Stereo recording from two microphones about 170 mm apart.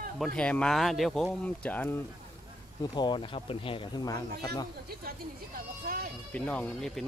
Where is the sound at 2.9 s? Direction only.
25° left (ahead or behind).